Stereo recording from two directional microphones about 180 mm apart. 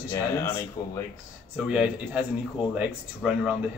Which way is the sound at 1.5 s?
5° right (ahead or behind).